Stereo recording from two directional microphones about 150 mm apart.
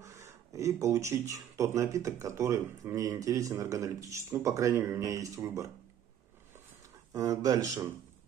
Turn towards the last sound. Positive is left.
turn(degrees=-20)  # may be behind; listen again after turning